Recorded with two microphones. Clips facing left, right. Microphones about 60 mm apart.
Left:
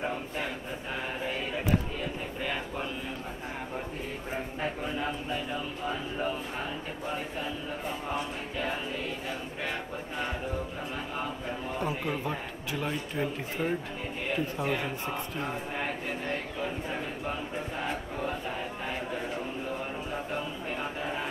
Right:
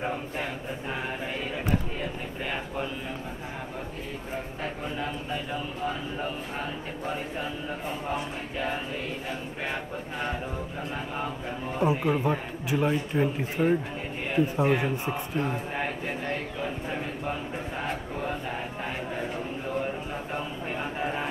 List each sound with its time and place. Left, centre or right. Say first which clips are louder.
8.1 s a man's voice: right 2 dB; centre
11.8 s a man's voice: right 9 dB; centre
21.0 s a sound: right 6 dB; right